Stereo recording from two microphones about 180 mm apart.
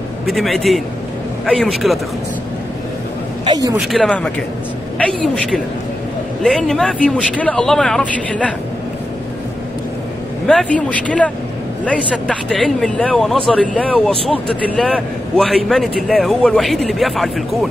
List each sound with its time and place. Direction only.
0.3 s a man's voice: centre (ahead or behind)
3.4 s speech: 20° right (ahead or behind)
3.8 s a man's voice: centre (ahead or behind)
10.4 s a man's voice: 5° left (ahead or behind)